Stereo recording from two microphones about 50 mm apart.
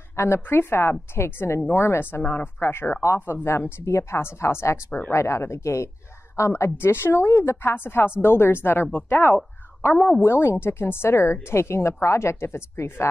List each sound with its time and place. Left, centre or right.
0.1 s a woman's voice: left
2.0 s speech: left
3.4 s a woman's voice: left